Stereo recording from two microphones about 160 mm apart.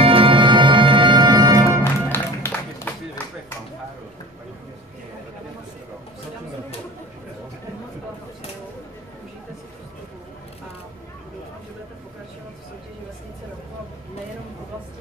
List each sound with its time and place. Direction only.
0.0 s music: 35° right (ahead or behind)
2.0 s music: 15° left (ahead or behind)